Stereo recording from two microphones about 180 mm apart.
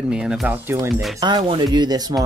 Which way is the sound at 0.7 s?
20° right (ahead or behind).